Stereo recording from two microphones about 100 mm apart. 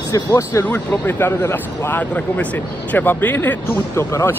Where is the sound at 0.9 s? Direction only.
20° left (ahead or behind).